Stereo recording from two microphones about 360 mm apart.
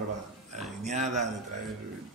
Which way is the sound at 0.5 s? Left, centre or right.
Centre.